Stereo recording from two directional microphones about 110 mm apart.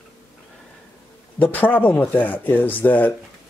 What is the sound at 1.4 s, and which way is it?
Speech, 15° left (ahead or behind).